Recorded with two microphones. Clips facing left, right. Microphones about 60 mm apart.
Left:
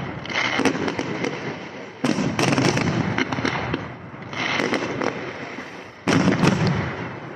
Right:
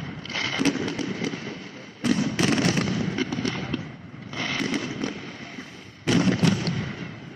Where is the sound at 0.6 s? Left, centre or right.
Left.